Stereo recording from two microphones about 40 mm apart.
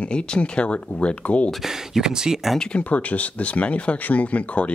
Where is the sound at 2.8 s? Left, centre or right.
Left.